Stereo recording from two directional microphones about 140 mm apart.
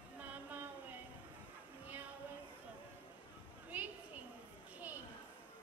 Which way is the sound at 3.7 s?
10° right (ahead or behind).